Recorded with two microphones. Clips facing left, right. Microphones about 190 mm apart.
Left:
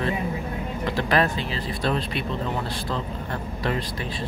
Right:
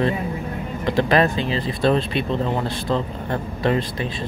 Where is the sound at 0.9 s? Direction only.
20° right (ahead or behind).